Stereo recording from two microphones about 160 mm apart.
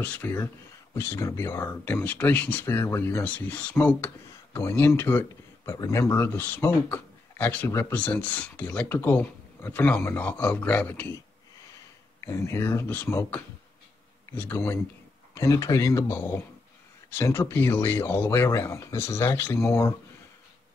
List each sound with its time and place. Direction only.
0.0 s speech: 10° left (ahead or behind)
12.2 s speech: 15° left (ahead or behind)